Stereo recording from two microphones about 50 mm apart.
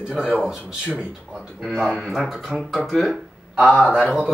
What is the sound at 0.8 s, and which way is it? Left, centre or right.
Speech, right.